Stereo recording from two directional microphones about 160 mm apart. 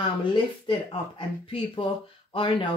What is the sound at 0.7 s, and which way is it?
Speech, 30° left (ahead or behind).